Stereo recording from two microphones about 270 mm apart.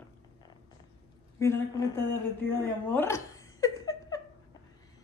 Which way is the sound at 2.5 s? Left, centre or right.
Centre.